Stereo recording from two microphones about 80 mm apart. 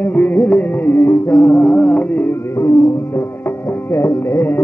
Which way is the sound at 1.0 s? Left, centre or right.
Left.